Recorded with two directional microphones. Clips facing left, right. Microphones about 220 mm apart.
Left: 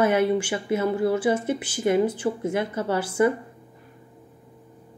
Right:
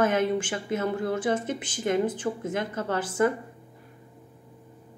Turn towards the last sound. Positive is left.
turn(degrees=10)  # may be behind; listen again after turning